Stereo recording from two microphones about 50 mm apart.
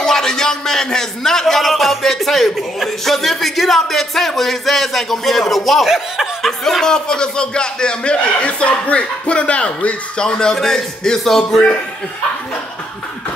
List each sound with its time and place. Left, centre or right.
0.0 s a man's voice: centre